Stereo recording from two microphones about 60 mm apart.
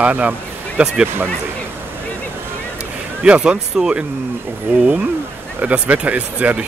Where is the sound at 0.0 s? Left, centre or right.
Right.